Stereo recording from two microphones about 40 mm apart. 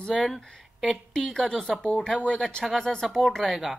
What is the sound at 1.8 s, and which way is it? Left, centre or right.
Speech, left.